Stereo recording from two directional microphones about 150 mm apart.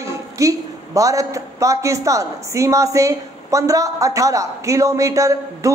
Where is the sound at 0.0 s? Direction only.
20° right (ahead or behind).